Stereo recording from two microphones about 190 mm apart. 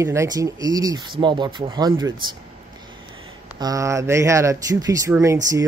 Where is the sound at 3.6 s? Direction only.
15° right (ahead or behind).